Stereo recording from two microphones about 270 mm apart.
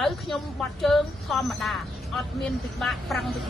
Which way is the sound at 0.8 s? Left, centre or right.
Centre.